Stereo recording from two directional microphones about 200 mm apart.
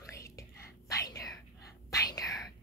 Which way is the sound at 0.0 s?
15° left (ahead or behind).